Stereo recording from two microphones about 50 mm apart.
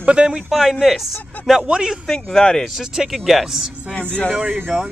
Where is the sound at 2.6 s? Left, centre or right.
Centre.